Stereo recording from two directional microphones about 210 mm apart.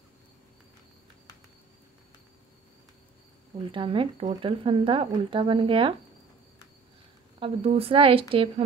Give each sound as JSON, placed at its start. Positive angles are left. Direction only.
{"t": 3.7, "sound": "speech", "side_deg": -25}
{"t": 7.3, "sound": "speech", "side_deg": -25}